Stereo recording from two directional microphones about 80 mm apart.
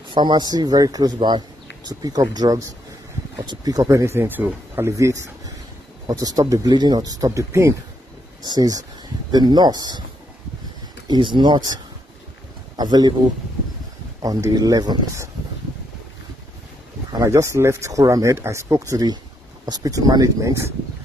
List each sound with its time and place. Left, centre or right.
0.1 s speech: right
4.0 s a man's voice: right
4.9 s speech: right
6.0 s speech: right
8.4 s speech: right
11.1 s speech: right
14.2 s speech: right
17.1 s speech: right